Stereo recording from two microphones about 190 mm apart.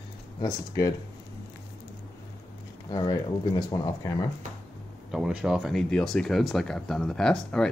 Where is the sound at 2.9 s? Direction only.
20° left (ahead or behind).